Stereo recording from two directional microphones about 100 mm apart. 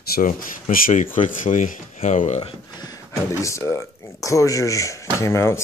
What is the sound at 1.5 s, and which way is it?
Speech, 90° left.